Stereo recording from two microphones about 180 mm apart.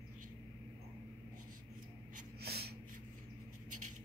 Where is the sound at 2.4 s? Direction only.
60° right (ahead or behind).